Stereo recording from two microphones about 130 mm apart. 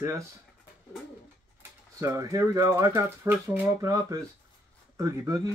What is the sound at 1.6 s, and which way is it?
Speech, 20° right (ahead or behind).